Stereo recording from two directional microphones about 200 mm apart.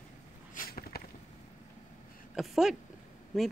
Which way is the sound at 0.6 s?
45° left (ahead or behind).